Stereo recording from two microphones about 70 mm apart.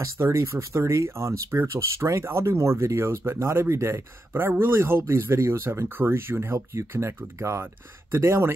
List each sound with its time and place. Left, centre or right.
0.0 s speech: right